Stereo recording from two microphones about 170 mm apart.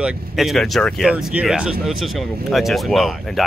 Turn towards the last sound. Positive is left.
turn(degrees=0)  # may be behind; listen again after turning